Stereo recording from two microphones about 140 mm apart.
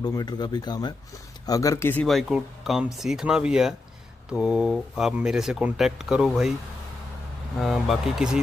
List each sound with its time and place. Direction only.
0.0 s speech: 30° left (ahead or behind)
2.0 s speech: centre (ahead or behind)
7.5 s speech: centre (ahead or behind)